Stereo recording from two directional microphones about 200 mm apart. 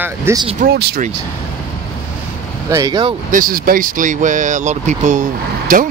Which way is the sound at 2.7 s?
20° right (ahead or behind).